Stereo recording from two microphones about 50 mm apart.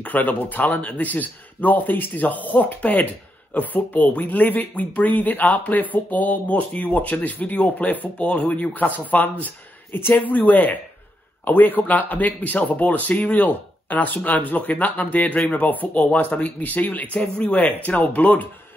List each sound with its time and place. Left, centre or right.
0.0 s a man's voice: left